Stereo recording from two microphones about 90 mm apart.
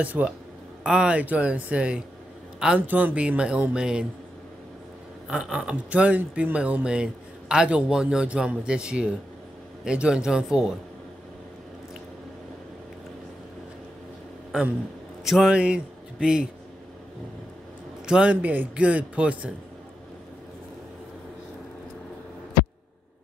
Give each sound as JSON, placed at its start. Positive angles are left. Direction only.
{"t": 0.0, "sound": "speech", "side_deg": -15}
{"t": 5.3, "sound": "speech", "side_deg": -10}
{"t": 15.2, "sound": "speech", "side_deg": 0}
{"t": 15.5, "sound": "speech", "side_deg": -10}
{"t": 18.0, "sound": "speech", "side_deg": -10}